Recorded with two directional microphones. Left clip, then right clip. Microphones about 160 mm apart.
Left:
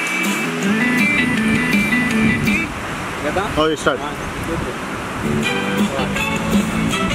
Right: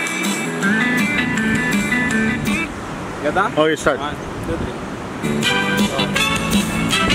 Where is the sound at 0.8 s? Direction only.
30° right (ahead or behind).